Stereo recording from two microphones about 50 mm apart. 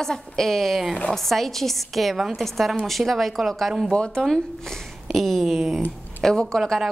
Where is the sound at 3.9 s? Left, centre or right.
Centre.